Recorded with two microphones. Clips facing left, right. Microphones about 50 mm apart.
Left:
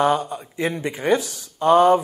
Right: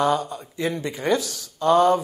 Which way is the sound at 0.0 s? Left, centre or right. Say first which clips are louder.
Left 2 dB; left.